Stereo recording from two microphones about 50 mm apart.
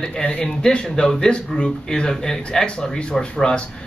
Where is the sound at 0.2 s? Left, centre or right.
Left.